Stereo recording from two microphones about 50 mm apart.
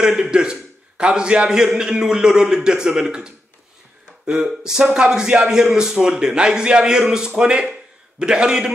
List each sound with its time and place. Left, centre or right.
0.0 s a man's voice: centre